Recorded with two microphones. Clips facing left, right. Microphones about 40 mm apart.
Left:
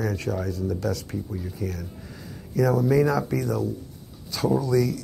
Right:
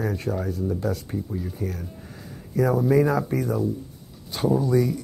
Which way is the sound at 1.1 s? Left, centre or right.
Centre.